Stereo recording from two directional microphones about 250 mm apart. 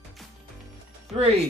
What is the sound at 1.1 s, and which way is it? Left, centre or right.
Speech, right.